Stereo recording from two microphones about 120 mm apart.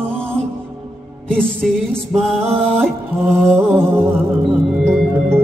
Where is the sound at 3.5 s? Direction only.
20° right (ahead or behind).